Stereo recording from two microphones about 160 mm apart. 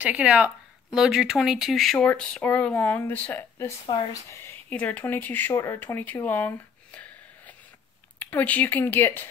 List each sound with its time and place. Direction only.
0.0 s speech: 5° right (ahead or behind); by 9.3 s 10° left (ahead or behind)